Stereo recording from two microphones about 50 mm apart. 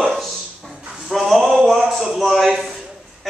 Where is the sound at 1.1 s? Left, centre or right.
Centre.